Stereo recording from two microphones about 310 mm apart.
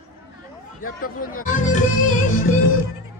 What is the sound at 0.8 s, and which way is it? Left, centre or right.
Music, left.